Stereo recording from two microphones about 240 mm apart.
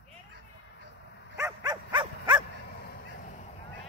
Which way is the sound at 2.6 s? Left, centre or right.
Left.